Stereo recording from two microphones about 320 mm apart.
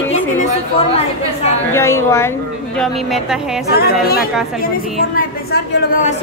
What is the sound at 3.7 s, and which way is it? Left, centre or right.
A woman's voice, left.